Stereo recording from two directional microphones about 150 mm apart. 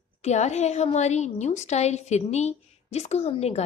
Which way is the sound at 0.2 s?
50° left (ahead or behind).